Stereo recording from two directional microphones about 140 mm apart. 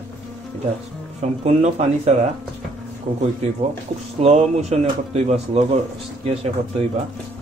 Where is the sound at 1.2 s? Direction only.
50° right (ahead or behind).